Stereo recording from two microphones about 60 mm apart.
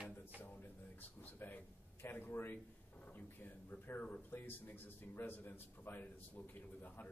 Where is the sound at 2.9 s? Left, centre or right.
Left.